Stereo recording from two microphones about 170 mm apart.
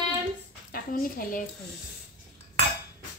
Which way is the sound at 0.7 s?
60° left (ahead or behind).